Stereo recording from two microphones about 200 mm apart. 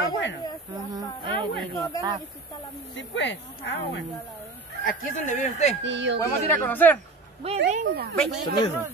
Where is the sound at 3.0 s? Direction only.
65° left (ahead or behind).